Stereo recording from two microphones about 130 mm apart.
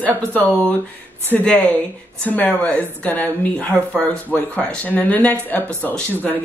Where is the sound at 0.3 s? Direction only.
10° left (ahead or behind).